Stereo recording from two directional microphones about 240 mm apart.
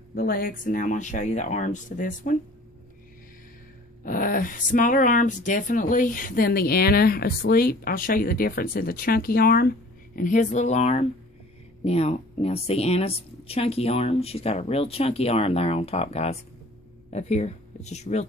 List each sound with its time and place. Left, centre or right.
0.1 s speech: left
4.0 s a woman's voice: left